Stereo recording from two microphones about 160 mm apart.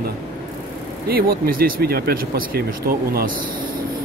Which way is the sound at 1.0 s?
70° right (ahead or behind).